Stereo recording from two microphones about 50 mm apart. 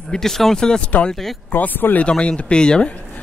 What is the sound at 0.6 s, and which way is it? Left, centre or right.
Speech, centre.